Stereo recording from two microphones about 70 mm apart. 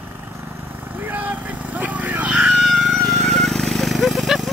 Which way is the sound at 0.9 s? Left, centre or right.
Right.